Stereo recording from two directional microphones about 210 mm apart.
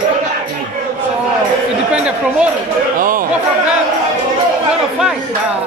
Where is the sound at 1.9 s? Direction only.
5° right (ahead or behind).